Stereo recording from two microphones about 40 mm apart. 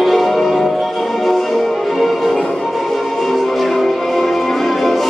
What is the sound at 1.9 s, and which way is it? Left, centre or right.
Music, centre.